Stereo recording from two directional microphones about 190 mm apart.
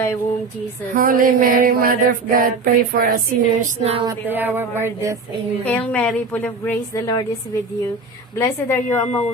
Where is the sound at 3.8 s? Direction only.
35° right (ahead or behind).